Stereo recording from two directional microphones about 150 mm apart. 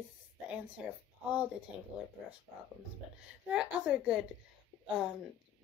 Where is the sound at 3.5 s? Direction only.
5° right (ahead or behind).